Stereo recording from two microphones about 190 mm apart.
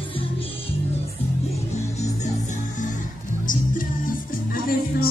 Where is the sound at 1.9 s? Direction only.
35° left (ahead or behind).